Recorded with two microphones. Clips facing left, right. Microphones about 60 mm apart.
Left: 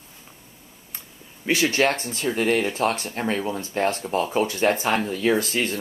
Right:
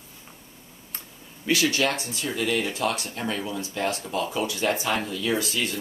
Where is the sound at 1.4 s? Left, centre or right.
Left.